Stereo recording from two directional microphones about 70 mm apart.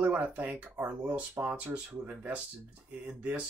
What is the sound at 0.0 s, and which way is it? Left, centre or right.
Speech, right.